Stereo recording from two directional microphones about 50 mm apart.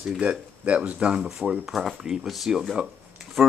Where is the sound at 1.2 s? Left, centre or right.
Centre.